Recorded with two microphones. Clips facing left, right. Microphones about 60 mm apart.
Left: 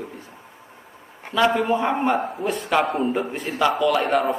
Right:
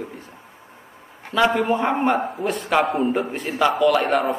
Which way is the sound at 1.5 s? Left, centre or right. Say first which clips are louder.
Right 1 dB; centre.